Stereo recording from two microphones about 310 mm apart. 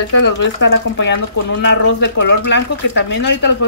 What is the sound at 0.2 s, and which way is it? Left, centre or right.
Speech, left.